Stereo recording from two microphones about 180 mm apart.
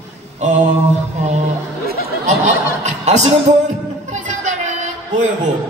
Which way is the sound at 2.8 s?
40° right (ahead or behind).